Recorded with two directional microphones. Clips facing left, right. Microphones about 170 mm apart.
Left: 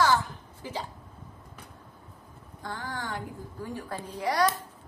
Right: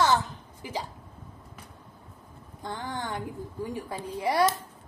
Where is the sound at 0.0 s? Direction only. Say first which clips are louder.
Even; 20° right (ahead or behind).